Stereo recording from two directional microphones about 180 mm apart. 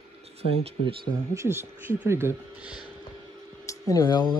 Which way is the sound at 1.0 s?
15° right (ahead or behind).